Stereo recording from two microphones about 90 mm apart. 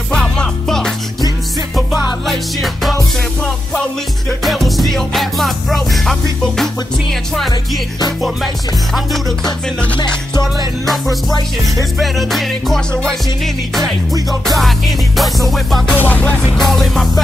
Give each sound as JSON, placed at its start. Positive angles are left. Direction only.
{"t": 0.1, "sound": "music", "side_deg": 5}
{"t": 2.2, "sound": "music", "side_deg": 0}
{"t": 4.4, "sound": "music", "side_deg": 0}
{"t": 8.9, "sound": "music", "side_deg": 0}
{"t": 9.9, "sound": "music", "side_deg": 50}
{"t": 10.9, "sound": "music", "side_deg": 0}
{"t": 14.4, "sound": "music", "side_deg": 0}
{"t": 15.9, "sound": "music", "side_deg": 20}
{"t": 16.5, "sound": "music", "side_deg": 0}